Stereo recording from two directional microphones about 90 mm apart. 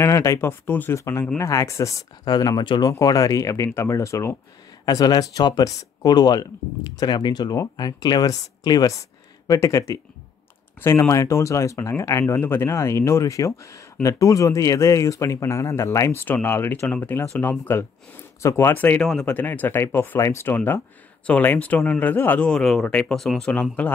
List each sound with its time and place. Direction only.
0.0 s speech: 35° left (ahead or behind); by 2.9 s 55° left (ahead or behind)
2.9 s speech: 40° left (ahead or behind)
4.8 s speech: 45° left (ahead or behind); by 18.7 s 30° left (ahead or behind)
18.7 s speech: 20° left (ahead or behind)
22.5 s speech: centre (ahead or behind)
23.5 s speech: 15° left (ahead or behind)